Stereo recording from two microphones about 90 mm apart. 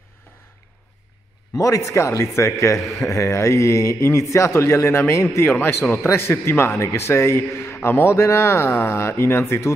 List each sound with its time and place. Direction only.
1.6 s a man's voice: 35° left (ahead or behind)